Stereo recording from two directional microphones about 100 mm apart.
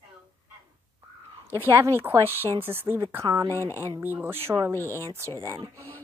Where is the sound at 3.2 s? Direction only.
35° right (ahead or behind).